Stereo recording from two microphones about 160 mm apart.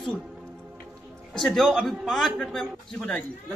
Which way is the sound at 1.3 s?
Centre (ahead or behind).